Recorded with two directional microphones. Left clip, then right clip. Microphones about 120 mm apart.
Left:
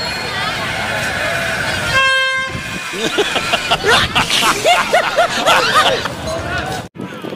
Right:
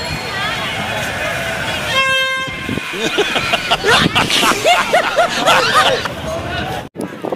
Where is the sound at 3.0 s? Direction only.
Centre (ahead or behind).